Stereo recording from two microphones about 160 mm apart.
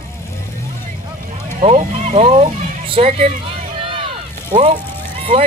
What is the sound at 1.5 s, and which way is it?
Vehicle, 45° right (ahead or behind).